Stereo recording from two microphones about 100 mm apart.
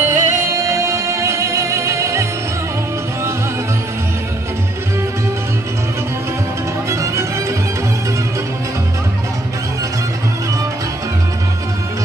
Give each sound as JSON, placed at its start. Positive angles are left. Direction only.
{"t": 0.0, "sound": "music", "side_deg": -30}
{"t": 6.9, "sound": "music", "side_deg": -30}